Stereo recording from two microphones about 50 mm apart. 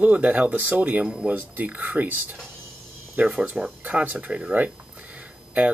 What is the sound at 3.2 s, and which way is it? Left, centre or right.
Speech, right.